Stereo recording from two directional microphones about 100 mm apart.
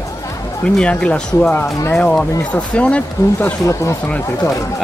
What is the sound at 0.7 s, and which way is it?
Speech, 10° left (ahead or behind).